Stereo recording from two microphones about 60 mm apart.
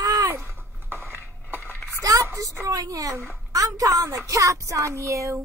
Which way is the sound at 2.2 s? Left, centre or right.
Right.